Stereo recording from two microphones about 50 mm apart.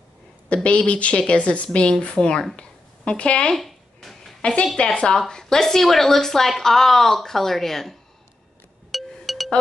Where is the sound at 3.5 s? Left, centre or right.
Centre.